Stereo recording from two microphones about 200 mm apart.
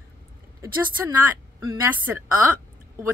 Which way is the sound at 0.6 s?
15° right (ahead or behind).